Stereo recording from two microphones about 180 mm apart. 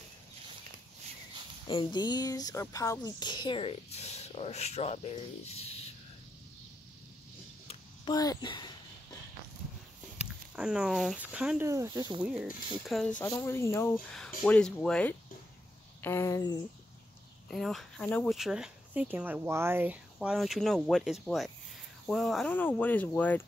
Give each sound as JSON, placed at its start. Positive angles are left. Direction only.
{"t": 1.7, "sound": "speech", "side_deg": 25}
{"t": 7.6, "sound": "a sound", "side_deg": 25}
{"t": 10.1, "sound": "speech", "side_deg": -5}
{"t": 11.7, "sound": "speech", "side_deg": -20}
{"t": 12.2, "sound": "speech", "side_deg": -5}
{"t": 13.2, "sound": "speech", "side_deg": 15}
{"t": 17.5, "sound": "speech", "side_deg": 0}
{"t": 20.2, "sound": "speech", "side_deg": 0}